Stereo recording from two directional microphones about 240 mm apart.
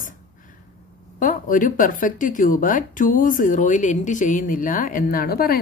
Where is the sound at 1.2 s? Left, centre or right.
Left.